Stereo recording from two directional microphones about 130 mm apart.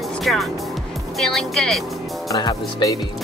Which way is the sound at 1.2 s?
5° left (ahead or behind).